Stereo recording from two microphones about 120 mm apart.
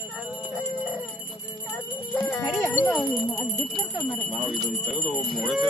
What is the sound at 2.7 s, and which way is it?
Speech, 20° left (ahead or behind).